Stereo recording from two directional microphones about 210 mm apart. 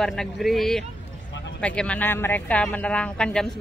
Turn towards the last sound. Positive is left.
turn(degrees=5)  # may be behind; listen again after turning